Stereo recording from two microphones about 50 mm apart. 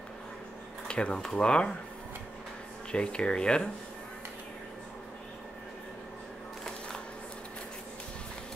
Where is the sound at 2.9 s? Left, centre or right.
Left.